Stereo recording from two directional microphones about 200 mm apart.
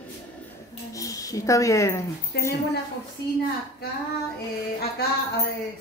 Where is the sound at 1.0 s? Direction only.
15° left (ahead or behind).